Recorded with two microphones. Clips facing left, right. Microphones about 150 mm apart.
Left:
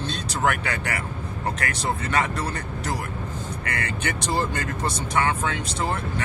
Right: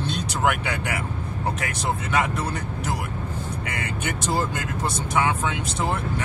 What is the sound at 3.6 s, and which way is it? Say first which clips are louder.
Speech: left 4 dB; 60° left (ahead or behind).